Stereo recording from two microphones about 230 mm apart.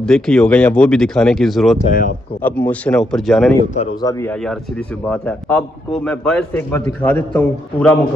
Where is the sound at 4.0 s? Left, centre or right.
Centre.